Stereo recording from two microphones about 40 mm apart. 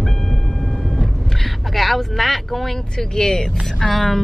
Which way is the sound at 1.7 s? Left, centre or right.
Centre.